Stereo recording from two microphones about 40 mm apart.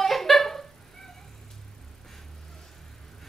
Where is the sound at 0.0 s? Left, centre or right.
Centre.